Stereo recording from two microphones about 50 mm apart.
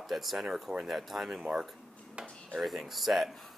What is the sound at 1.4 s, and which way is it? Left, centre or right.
Speech, centre.